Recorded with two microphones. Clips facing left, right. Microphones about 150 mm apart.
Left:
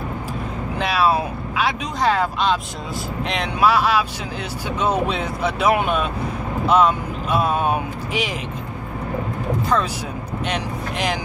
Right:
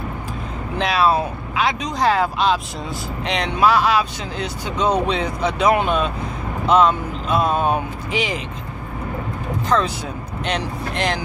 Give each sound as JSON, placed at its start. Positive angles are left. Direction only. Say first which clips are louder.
{"t": 0.7, "sound": "speech", "louder": "right 1 dB", "side_deg": 5}
{"t": 10.4, "sound": "speech", "louder": "right 2 dB", "side_deg": 5}